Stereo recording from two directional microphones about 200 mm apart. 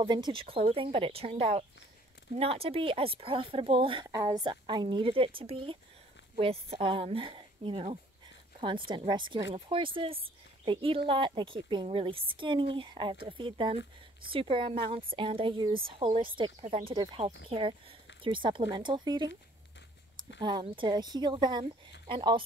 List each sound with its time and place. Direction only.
0.0 s speech: 25° right (ahead or behind)
20.3 s speech: 25° right (ahead or behind)